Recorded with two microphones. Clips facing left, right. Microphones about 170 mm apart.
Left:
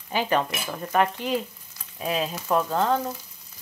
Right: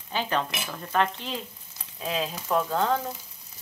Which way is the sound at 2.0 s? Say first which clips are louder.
Left 3 dB; 5° left (ahead or behind).